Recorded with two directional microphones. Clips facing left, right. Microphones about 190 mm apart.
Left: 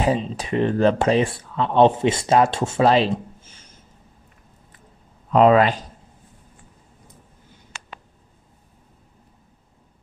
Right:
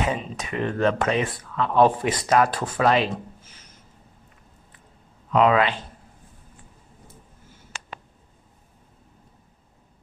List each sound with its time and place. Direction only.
0.0 s speech: 30° left (ahead or behind)
5.3 s speech: 35° left (ahead or behind)
7.7 s a sound: 45° right (ahead or behind)